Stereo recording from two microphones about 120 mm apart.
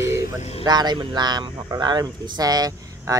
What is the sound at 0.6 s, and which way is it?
Speech, 35° right (ahead or behind).